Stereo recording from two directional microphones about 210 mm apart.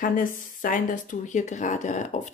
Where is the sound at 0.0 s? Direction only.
40° left (ahead or behind).